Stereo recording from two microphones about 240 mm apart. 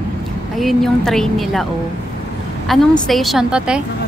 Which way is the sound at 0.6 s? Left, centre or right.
Centre.